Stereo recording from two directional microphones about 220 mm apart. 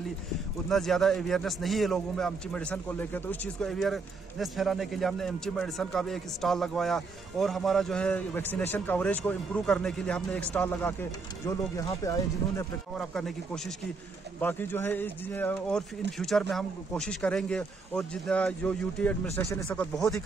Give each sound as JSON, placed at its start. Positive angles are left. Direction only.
{"t": 0.7, "sound": "a man's voice", "side_deg": 0}
{"t": 12.9, "sound": "a man's voice", "side_deg": 0}